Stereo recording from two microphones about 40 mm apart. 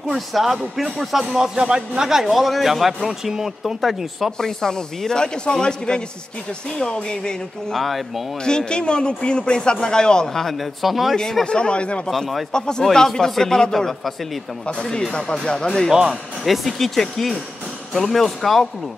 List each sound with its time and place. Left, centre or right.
0.1 s speech: centre
4.4 s speech: centre
7.7 s speech: centre
8.5 s speech: left
10.6 s speech: centre
11.4 s speech: left
15.9 s speech: centre
16.4 s speech: centre